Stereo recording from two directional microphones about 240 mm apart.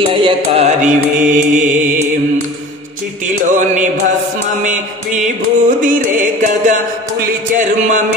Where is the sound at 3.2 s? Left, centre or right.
Right.